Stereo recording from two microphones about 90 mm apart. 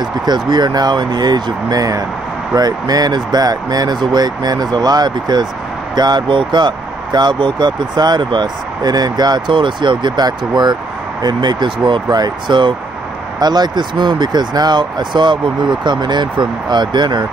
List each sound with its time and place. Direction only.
0.0 s speech: 50° right (ahead or behind)